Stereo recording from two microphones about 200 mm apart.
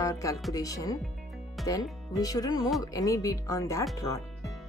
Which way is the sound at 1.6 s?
Centre (ahead or behind).